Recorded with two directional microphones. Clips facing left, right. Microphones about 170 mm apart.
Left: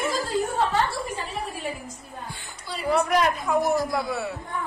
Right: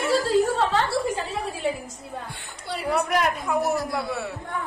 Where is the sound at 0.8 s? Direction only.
90° right.